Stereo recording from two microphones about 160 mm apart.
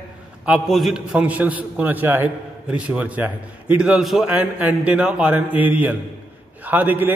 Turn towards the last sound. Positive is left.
turn(degrees=-10)  # may be behind; listen again after turning